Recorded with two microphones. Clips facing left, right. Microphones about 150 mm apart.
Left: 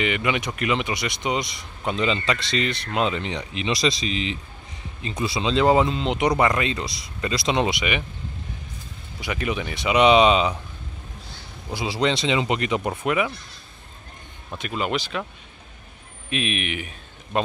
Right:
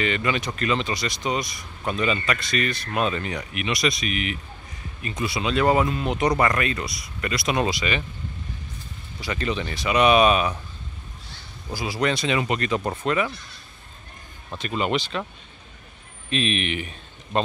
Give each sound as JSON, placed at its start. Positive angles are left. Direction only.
{"t": 0.0, "sound": "speech", "side_deg": 15}
{"t": 9.2, "sound": "speech", "side_deg": 10}
{"t": 11.7, "sound": "speech", "side_deg": 25}
{"t": 14.5, "sound": "speech", "side_deg": 5}
{"t": 16.3, "sound": "a man's voice", "side_deg": 5}